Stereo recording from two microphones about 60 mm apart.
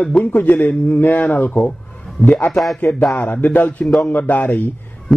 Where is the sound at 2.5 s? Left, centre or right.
Centre.